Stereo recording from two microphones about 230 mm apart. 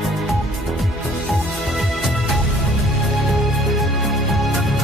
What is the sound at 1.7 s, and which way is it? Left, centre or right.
Music, centre.